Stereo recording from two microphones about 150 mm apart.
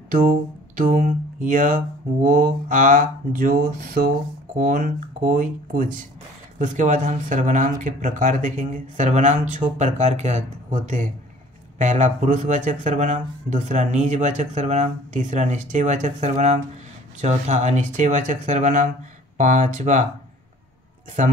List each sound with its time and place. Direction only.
0.7 s speech: 60° right (ahead or behind)